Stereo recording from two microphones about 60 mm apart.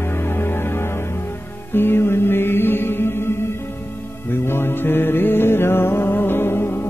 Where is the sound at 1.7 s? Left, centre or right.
Left.